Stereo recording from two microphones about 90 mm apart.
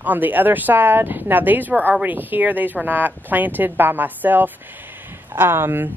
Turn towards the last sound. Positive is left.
turn(degrees=-25)  # may be behind; listen again after turning